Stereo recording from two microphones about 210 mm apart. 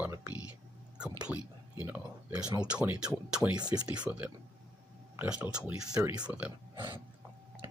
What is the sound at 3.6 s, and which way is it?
Speech, 20° right (ahead or behind).